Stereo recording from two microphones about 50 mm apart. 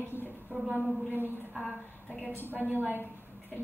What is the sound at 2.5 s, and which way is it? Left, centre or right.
Speech, right.